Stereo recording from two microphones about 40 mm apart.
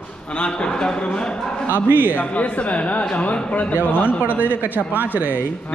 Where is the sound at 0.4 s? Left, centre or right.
Left.